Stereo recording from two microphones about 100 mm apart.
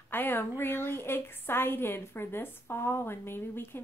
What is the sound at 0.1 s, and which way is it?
A woman's voice, 20° left (ahead or behind).